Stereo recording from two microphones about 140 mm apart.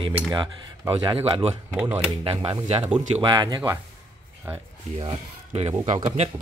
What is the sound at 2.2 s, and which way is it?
Speech, 40° right (ahead or behind).